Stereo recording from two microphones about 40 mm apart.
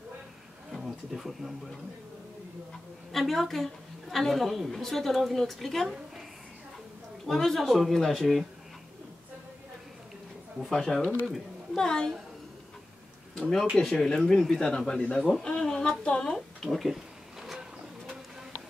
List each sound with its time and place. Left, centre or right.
0.7 s a sound: centre
3.1 s a woman's voice: centre
7.2 s a woman's voice: centre
10.6 s a woman's voice: centre
11.8 s speech: centre
13.8 s speech: centre
16.6 s a sound: centre